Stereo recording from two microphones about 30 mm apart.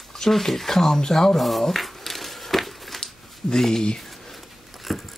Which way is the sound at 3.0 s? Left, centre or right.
Centre.